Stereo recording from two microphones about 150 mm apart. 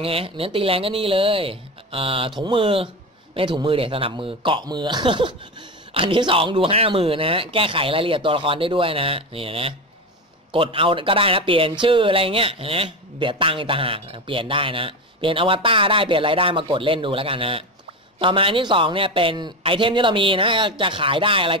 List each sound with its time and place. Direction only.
0.0 s speech: 40° right (ahead or behind)